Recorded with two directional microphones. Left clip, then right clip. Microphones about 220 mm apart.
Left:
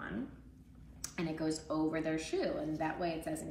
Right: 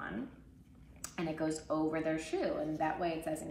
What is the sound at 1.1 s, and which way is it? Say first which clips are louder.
A woman's voice: right 1 dB; 15° right (ahead or behind).